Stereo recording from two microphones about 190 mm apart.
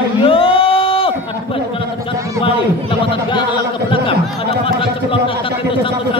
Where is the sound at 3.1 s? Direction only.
25° left (ahead or behind).